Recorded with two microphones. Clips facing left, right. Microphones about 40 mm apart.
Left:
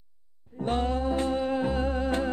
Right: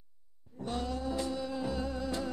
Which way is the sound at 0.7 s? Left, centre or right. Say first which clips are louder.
Left 8 dB; left.